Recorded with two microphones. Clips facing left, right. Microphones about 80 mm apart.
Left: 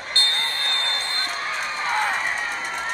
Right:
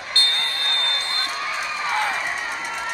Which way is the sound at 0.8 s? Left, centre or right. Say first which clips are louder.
Even; left.